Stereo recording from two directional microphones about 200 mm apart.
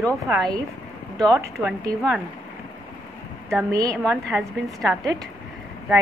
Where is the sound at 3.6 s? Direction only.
15° right (ahead or behind).